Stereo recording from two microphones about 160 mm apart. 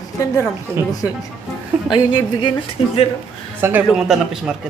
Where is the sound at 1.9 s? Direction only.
30° left (ahead or behind).